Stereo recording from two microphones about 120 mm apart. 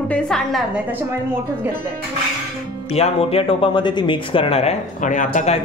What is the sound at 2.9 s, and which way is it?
Speech, 60° left (ahead or behind).